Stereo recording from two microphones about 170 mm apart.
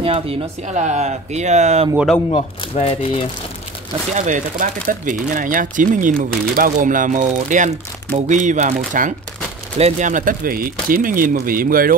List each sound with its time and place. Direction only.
0.0 s speech: 35° right (ahead or behind)
2.6 s speech: 35° left (ahead or behind)
4.1 s speech: 45° right (ahead or behind)
9.8 s speech: 40° right (ahead or behind); by 11.9 s 55° right (ahead or behind)